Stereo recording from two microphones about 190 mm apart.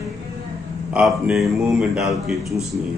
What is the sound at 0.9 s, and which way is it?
Speech, 5° right (ahead or behind).